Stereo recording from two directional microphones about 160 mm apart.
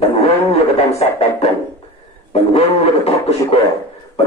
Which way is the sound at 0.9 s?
40° left (ahead or behind).